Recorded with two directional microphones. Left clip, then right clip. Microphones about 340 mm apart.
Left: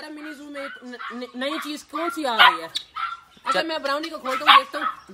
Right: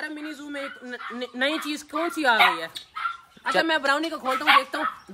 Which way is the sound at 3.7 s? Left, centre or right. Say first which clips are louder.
Right 2 dB; centre.